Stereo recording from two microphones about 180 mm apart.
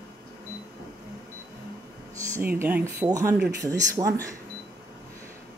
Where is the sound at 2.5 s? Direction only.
10° right (ahead or behind).